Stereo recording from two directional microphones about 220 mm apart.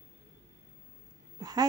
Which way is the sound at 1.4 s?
20° right (ahead or behind).